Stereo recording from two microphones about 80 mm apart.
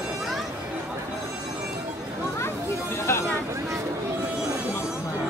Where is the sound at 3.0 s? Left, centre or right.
Left.